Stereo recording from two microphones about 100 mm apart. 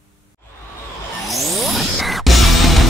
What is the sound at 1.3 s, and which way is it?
Music, centre (ahead or behind).